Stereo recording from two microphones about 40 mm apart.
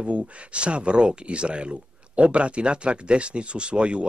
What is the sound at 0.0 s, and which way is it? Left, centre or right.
Speech, right.